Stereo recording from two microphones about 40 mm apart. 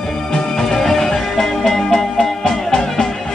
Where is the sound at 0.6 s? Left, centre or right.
Centre.